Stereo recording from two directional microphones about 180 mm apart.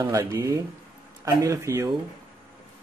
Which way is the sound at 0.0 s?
15° right (ahead or behind).